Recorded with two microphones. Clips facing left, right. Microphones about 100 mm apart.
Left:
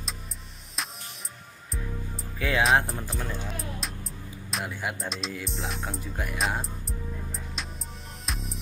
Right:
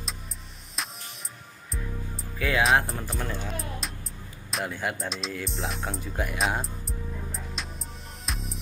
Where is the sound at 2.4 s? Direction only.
25° left (ahead or behind).